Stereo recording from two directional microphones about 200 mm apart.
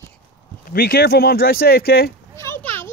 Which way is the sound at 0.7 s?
50° left (ahead or behind).